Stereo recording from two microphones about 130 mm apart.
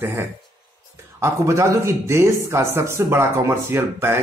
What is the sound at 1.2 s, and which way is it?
Speech, 20° right (ahead or behind).